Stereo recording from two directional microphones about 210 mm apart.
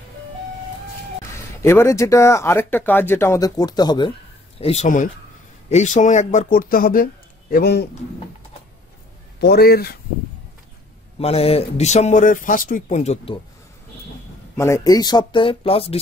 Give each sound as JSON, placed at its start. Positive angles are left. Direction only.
{"t": 1.6, "sound": "a man's voice", "side_deg": 10}
{"t": 9.4, "sound": "a man's voice", "side_deg": 50}
{"t": 11.1, "sound": "speech", "side_deg": 30}
{"t": 14.6, "sound": "speech", "side_deg": 15}